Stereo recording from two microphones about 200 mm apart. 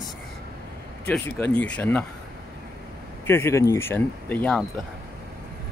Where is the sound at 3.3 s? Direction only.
10° left (ahead or behind).